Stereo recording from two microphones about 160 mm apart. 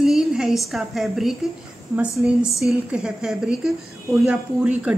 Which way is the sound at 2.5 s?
20° left (ahead or behind).